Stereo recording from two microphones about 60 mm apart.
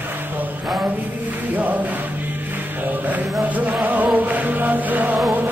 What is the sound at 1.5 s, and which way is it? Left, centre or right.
Music, right.